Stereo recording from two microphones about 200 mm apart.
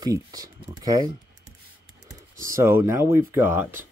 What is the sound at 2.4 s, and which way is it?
Speech, 15° right (ahead or behind).